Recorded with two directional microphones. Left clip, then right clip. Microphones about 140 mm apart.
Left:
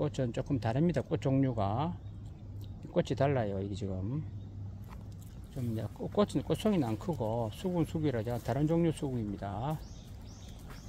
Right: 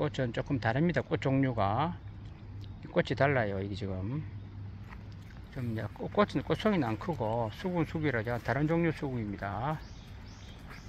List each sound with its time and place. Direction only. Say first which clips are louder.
0.0 s speech: right 2 dB; 10° left (ahead or behind)
5.5 s speech: right 1 dB; 20° left (ahead or behind)
7.2 s speech: right 2 dB; 15° right (ahead or behind)
7.4 s speech: right 1 dB; 15° left (ahead or behind)